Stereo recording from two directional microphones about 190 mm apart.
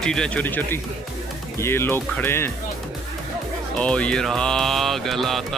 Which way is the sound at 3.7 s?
5° left (ahead or behind).